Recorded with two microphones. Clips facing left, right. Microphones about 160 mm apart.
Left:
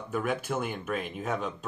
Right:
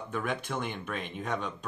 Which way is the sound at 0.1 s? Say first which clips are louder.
Left 4 dB; 5° left (ahead or behind).